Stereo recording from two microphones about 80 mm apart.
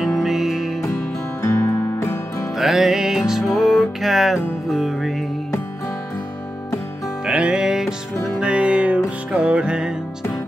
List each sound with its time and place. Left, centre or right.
0.0 s music: centre
1.4 s music: left
2.5 s music: centre
7.2 s music: centre